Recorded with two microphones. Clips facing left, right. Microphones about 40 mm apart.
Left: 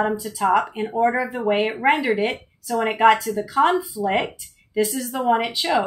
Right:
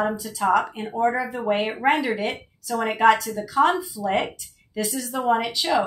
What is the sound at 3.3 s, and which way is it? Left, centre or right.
A woman's voice, left.